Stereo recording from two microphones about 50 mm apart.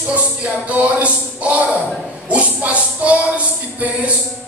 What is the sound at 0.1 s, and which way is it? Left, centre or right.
Speech, right.